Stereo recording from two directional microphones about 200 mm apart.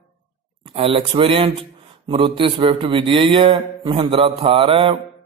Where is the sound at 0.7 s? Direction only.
25° right (ahead or behind).